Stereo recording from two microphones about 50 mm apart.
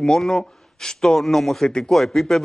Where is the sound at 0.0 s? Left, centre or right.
Centre.